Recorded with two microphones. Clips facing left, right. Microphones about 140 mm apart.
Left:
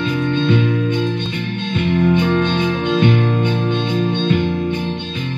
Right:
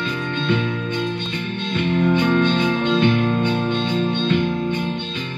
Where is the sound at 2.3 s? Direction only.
25° left (ahead or behind).